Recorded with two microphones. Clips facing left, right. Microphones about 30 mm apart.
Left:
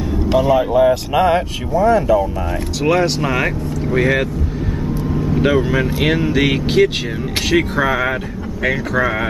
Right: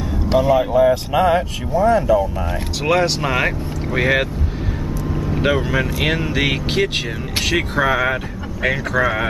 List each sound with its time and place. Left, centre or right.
0.4 s speech: centre
2.8 s speech: centre
5.1 s vehicle: centre
5.9 s speech: centre